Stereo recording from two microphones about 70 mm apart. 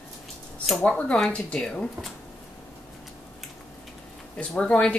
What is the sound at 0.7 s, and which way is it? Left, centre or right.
A woman's voice, centre.